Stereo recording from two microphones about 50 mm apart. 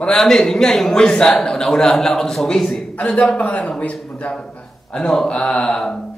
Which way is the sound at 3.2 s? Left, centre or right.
Left.